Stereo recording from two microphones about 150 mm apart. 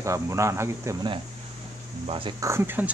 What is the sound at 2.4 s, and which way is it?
Speech, 15° right (ahead or behind).